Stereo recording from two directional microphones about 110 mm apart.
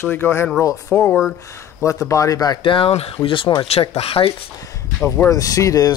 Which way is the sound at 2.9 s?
65° left (ahead or behind).